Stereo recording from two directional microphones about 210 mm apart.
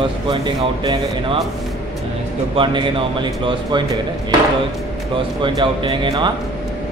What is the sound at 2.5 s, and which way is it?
Speech, 25° right (ahead or behind).